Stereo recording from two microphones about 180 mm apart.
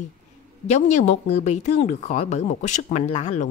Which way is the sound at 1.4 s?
40° left (ahead or behind).